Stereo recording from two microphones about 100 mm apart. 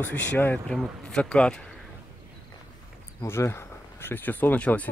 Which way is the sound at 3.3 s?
25° left (ahead or behind).